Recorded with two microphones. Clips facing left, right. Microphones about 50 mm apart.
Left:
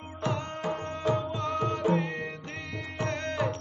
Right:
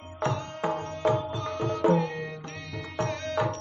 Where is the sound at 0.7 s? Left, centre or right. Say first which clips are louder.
Right 3 dB; left.